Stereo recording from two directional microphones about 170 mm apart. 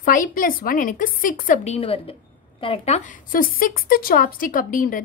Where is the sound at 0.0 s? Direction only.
55° left (ahead or behind).